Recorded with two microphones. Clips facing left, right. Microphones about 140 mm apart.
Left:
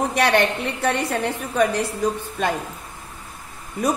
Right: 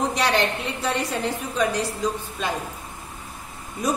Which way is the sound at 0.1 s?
60° left (ahead or behind).